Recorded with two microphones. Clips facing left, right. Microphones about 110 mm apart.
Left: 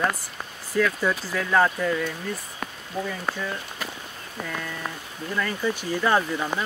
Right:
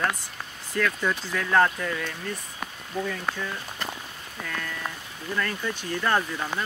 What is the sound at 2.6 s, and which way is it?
Rain on surface, 5° left (ahead or behind).